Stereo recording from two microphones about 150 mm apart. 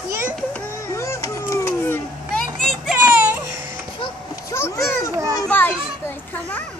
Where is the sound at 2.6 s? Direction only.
5° right (ahead or behind).